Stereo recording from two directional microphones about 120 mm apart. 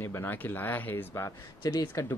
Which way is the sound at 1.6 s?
30° left (ahead or behind).